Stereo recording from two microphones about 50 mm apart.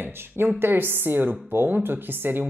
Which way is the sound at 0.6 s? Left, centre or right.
Right.